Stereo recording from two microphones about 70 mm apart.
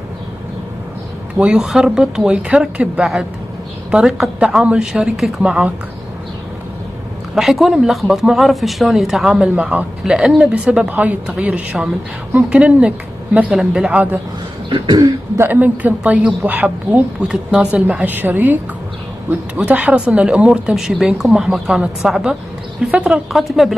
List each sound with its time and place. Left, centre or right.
1.6 s a woman's voice: centre
7.3 s a woman's voice: centre
14.7 s throat clearing: right
15.4 s a woman's voice: right
18.0 s a woman's voice: right
20.7 s speech: centre